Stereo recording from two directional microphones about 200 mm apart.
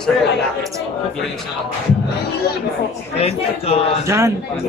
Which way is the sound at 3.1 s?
30° left (ahead or behind).